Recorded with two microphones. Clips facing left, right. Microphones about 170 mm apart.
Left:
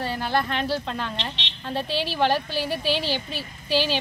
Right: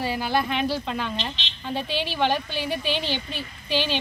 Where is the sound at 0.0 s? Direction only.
5° right (ahead or behind).